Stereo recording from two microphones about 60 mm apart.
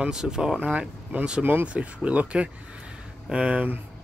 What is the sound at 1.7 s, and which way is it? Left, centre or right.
Speech, right.